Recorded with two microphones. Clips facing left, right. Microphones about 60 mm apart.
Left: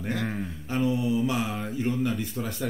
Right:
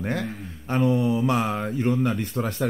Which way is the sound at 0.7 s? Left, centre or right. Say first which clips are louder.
Right 4 dB; right.